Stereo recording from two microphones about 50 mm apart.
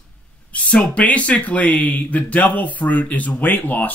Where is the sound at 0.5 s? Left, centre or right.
Left.